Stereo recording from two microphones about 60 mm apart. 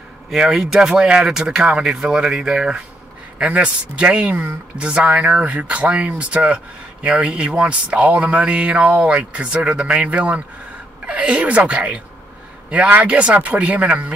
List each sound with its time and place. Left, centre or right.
0.3 s speech: centre
3.3 s speech: right